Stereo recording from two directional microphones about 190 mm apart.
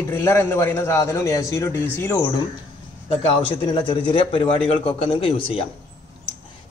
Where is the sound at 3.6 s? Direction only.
25° left (ahead or behind).